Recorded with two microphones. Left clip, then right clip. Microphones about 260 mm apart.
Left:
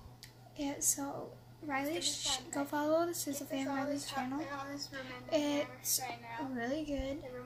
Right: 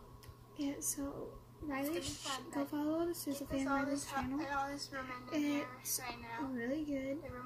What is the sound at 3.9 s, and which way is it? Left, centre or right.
Speech, right.